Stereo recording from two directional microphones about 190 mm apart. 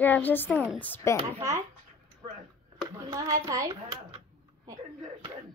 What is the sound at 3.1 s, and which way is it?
Speech, 15° right (ahead or behind).